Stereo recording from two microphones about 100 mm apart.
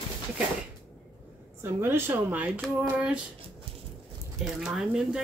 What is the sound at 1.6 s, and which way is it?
Speech, 25° right (ahead or behind).